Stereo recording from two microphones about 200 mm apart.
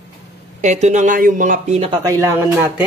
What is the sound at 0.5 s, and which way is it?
Speech, 35° right (ahead or behind).